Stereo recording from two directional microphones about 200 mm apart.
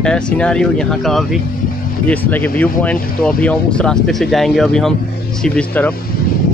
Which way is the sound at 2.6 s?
5° left (ahead or behind).